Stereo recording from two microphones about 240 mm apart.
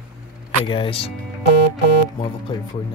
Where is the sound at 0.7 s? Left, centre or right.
Left.